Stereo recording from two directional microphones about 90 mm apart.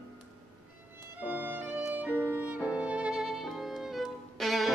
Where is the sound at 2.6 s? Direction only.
15° right (ahead or behind).